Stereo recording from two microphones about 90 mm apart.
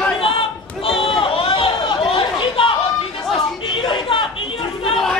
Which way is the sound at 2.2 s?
85° left.